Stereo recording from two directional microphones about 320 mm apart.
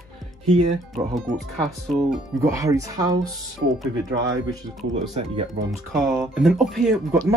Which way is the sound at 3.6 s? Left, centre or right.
Right.